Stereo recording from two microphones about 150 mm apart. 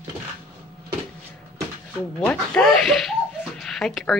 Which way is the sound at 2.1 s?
5° left (ahead or behind).